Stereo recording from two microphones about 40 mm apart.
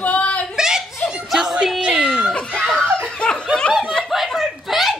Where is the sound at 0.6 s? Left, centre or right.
Centre.